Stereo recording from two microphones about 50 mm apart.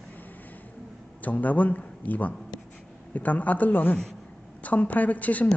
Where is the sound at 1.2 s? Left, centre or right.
Left.